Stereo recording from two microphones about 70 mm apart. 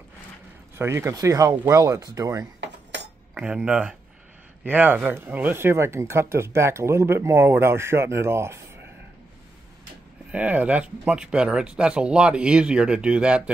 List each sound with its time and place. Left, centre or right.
0.7 s speech: right
1.1 s speech: right
3.3 s speech: centre
4.6 s speech: right
10.3 s speech: right